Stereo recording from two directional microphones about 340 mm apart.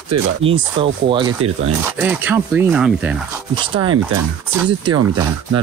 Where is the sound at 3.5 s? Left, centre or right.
Centre.